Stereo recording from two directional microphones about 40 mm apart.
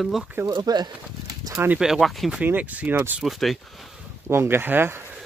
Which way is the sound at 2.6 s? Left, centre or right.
Right.